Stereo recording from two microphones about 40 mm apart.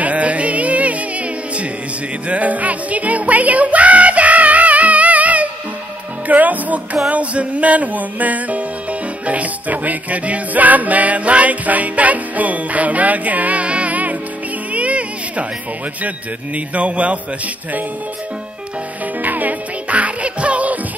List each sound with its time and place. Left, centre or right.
0.0 s music: right
16.5 s a man's voice: right
19.2 s music: right